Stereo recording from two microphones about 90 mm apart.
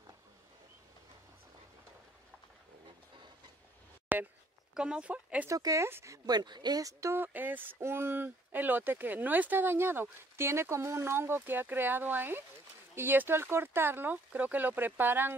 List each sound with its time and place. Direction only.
4.1 s a sound: 20° right (ahead or behind)
4.7 s speech: 10° right (ahead or behind)
5.5 s speech: 40° right (ahead or behind)
5.9 s speech: 25° right (ahead or behind)
6.2 s speech: 50° right (ahead or behind)
6.8 s speech: 35° right (ahead or behind)
7.2 s speech: 20° right (ahead or behind)